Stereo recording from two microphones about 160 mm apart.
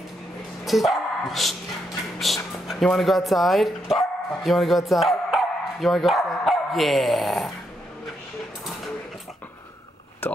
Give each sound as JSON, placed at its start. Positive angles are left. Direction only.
{"t": 0.7, "sound": "dog", "side_deg": 0}
{"t": 2.1, "sound": "speech", "side_deg": 0}
{"t": 10.2, "sound": "speech", "side_deg": 10}